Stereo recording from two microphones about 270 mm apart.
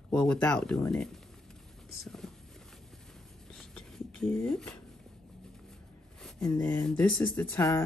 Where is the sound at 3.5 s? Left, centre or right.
Centre.